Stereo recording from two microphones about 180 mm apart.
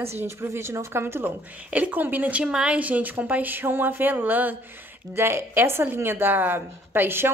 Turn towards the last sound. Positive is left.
turn(degrees=-10)  # may be behind; listen again after turning